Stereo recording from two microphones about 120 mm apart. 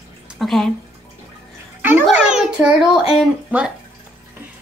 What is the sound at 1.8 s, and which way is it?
A child's voice, 15° right (ahead or behind).